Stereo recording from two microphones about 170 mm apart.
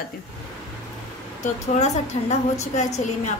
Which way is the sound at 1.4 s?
40° left (ahead or behind).